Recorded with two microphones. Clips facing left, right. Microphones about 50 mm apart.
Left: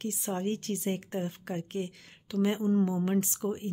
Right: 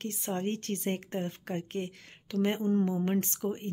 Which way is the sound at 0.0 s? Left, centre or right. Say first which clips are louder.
Left 1 dB; right.